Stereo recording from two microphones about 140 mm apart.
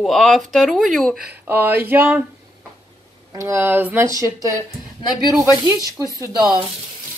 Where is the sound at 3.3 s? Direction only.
20° right (ahead or behind).